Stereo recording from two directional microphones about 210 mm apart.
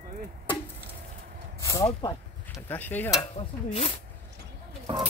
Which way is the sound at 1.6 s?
15° left (ahead or behind).